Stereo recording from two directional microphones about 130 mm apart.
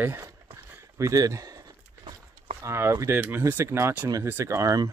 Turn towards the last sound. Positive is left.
turn(degrees=-25)  # may be behind; listen again after turning